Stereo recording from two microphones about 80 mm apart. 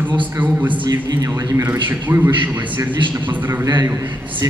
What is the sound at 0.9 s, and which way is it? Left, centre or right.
Speech, right.